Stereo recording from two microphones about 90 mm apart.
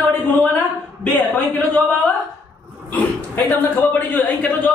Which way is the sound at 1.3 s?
15° left (ahead or behind).